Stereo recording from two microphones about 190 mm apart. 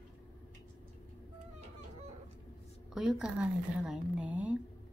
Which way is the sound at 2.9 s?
Centre (ahead or behind).